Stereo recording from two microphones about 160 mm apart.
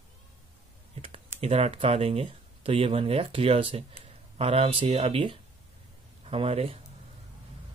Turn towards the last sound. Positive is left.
turn(degrees=-40)  # may be behind; listen again after turning